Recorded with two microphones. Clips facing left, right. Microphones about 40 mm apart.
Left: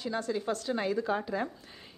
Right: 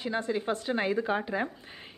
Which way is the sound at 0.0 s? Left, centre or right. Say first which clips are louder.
Right 2 dB; right.